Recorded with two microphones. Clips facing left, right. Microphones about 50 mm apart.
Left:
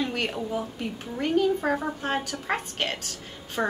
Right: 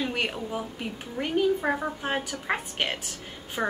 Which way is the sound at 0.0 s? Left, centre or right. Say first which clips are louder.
Left 1 dB; centre.